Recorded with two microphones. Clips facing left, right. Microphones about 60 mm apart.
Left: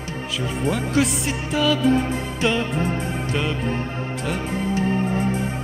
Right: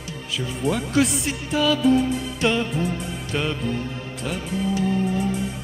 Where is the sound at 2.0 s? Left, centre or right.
Left.